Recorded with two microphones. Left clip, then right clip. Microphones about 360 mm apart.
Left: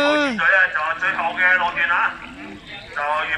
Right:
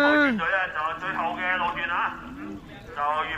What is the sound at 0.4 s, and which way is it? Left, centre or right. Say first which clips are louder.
Radio: left 9 dB; left.